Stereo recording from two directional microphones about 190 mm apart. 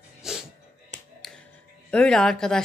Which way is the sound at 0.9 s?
40° right (ahead or behind).